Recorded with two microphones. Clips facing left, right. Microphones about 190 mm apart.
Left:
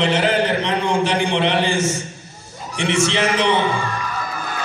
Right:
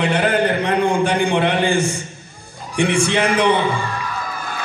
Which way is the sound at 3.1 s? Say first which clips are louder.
Right 2 dB; 55° right (ahead or behind).